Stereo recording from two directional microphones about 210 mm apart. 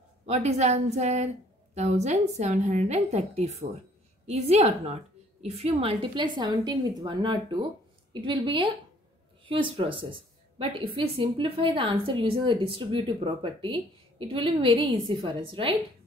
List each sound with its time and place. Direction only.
0.3 s a woman's voice: 30° right (ahead or behind)